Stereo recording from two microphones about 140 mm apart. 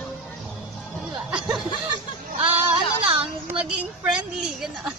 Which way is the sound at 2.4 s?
40° right (ahead or behind).